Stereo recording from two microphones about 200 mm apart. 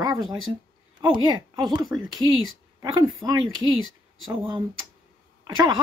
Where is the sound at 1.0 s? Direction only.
20° right (ahead or behind).